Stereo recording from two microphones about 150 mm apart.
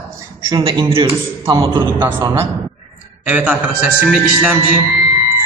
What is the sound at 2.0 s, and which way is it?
Speech, 15° right (ahead or behind).